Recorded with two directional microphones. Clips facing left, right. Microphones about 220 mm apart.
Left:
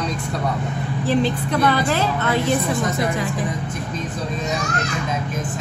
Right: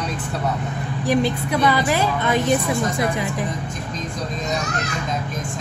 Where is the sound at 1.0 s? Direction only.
15° right (ahead or behind).